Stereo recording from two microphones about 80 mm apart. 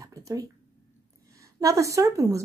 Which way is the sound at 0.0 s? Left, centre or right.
Right.